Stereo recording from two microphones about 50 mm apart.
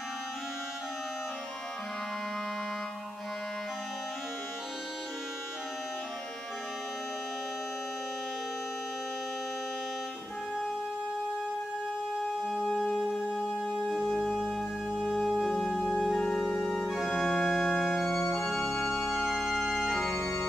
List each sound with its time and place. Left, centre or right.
12.2 s organ: centre
13.4 s music: centre
14.1 s organ: centre
15.1 s music: centre
16.1 s organ: centre
18.3 s music: centre
19.1 s organ: centre